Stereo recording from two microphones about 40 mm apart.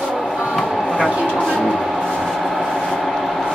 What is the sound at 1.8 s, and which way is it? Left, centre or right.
Vehicle, centre.